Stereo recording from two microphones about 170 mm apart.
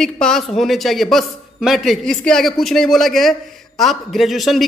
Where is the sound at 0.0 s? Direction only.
5° left (ahead or behind).